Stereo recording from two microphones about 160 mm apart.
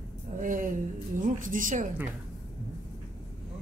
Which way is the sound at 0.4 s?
55° right (ahead or behind).